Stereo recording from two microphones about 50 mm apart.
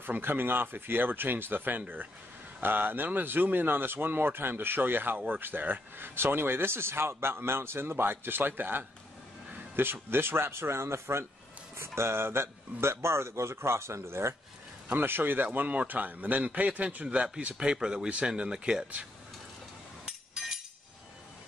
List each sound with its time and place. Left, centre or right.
0.0 s speech: right
14.9 s speech: right; by 18.9 s centre
20.1 s chink: centre